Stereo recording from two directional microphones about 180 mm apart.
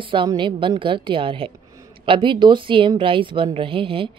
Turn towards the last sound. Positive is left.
turn(degrees=-30)  # may be behind; listen again after turning